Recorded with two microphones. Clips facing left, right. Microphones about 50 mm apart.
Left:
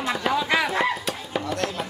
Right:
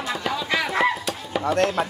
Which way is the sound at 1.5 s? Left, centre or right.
Right.